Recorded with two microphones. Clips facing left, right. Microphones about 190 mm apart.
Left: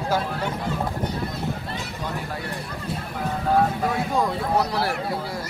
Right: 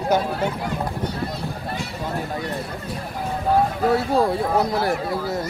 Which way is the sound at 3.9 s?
35° right (ahead or behind).